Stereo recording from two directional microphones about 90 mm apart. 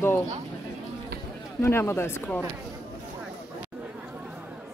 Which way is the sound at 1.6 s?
25° left (ahead or behind).